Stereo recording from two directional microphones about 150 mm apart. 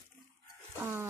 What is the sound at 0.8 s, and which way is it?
Music, 15° right (ahead or behind).